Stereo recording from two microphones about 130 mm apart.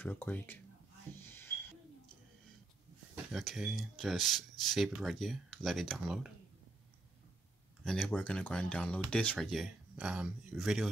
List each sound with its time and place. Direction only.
0.0 s speech: 15° left (ahead or behind)
1.2 s a sound: 20° left (ahead or behind)
3.3 s speech: centre (ahead or behind)
7.8 s speech: 5° left (ahead or behind)